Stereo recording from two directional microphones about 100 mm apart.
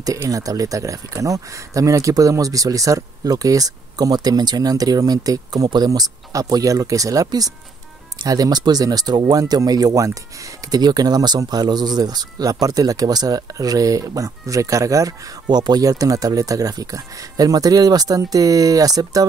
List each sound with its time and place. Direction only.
0.0 s speech: 35° right (ahead or behind)